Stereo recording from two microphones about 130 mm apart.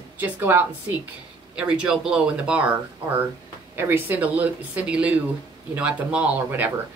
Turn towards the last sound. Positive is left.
turn(degrees=-10)  # may be behind; listen again after turning